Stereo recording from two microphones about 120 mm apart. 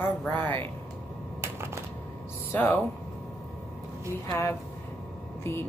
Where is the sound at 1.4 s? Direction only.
20° right (ahead or behind).